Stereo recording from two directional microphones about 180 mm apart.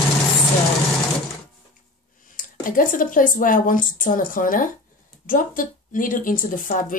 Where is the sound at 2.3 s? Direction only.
50° left (ahead or behind).